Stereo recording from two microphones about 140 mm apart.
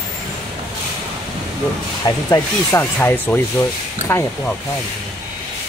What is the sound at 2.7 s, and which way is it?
Speech, 15° left (ahead or behind).